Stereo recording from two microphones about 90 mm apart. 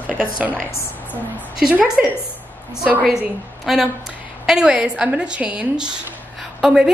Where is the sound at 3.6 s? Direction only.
5° right (ahead or behind).